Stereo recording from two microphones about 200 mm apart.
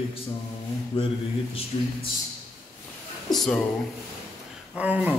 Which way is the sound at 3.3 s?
Centre (ahead or behind).